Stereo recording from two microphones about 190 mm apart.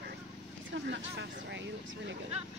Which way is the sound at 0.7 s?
65° right (ahead or behind).